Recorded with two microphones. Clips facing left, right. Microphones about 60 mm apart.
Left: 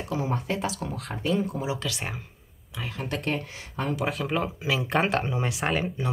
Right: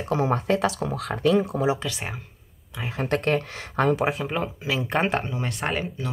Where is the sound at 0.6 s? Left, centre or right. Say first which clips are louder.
Right 6 dB; right.